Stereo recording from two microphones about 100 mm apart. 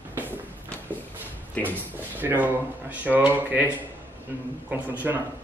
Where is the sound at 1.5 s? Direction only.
15° left (ahead or behind).